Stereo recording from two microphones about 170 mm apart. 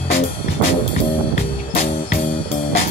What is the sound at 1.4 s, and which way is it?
Music, 40° left (ahead or behind).